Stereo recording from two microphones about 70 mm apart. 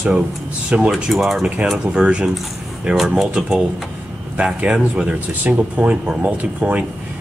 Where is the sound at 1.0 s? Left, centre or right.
Centre.